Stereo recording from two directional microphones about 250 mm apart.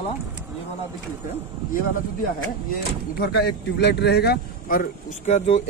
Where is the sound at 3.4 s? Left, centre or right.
Left.